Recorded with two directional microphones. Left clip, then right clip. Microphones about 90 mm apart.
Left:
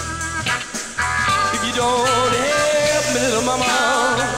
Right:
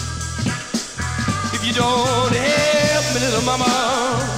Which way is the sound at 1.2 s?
20° left (ahead or behind).